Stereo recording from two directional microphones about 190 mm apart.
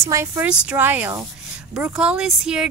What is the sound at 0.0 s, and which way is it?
A woman's voice, 15° right (ahead or behind).